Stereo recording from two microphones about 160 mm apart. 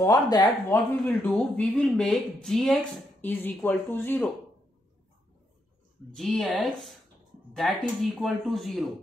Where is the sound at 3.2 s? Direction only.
10° left (ahead or behind).